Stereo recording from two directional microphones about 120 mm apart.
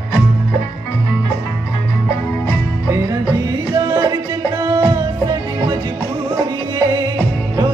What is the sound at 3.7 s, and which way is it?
Music, 35° right (ahead or behind).